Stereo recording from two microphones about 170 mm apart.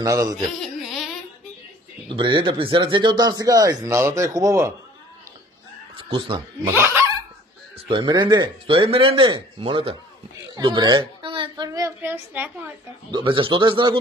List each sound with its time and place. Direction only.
0.0 s speech: 20° right (ahead or behind)
0.6 s a sound: centre (ahead or behind)
2.0 s speech: 30° right (ahead or behind)
5.9 s speech: 30° right (ahead or behind)
6.6 s speech: 10° right (ahead or behind)
7.9 s a woman's voice: 25° right (ahead or behind)
13.1 s speech: 30° right (ahead or behind)